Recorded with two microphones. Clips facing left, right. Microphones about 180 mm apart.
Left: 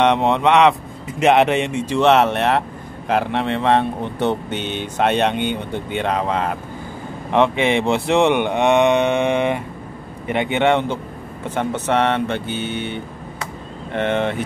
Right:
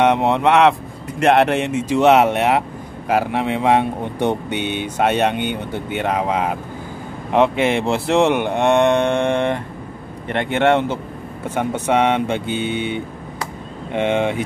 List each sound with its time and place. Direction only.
0.0 s speech: 5° right (ahead or behind)